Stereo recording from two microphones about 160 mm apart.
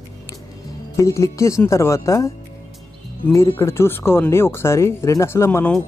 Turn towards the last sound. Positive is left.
turn(degrees=15)  # may be behind; listen again after turning